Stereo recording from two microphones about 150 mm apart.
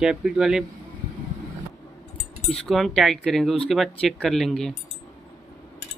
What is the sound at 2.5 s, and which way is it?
Speech, centre (ahead or behind).